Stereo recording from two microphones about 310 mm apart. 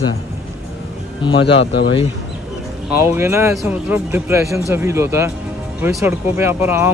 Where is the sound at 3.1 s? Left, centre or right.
Centre.